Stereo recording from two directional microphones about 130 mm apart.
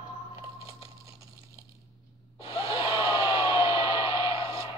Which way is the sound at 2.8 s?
20° right (ahead or behind).